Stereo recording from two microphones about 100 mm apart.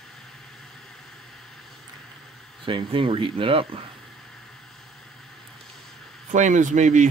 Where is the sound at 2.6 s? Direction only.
60° right (ahead or behind).